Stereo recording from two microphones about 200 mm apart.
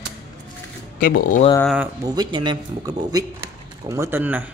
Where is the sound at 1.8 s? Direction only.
20° right (ahead or behind).